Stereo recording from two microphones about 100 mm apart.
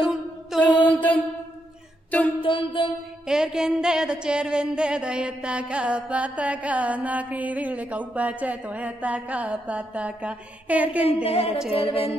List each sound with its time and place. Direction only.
0.0 s mantra: 5° right (ahead or behind)
0.9 s mantra: 15° left (ahead or behind)
2.0 s female singing: 15° left (ahead or behind)
2.4 s music: 55° left (ahead or behind)
3.3 s a sound: 5° right (ahead or behind)
11.2 s music: 75° left (ahead or behind)